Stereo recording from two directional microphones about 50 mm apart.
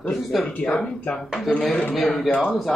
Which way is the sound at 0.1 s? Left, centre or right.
Centre.